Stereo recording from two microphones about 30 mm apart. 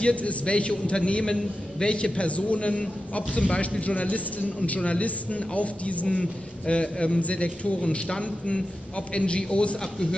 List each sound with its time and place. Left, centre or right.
0.0 s a man's voice: left
2.1 s speech: left
3.4 s a man's voice: left
3.8 s a man's voice: left
6.0 s a man's voice: left
7.2 s a man's voice: left